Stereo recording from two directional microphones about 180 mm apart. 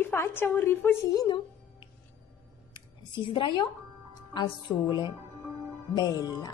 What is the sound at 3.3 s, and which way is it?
A woman's voice, 25° left (ahead or behind).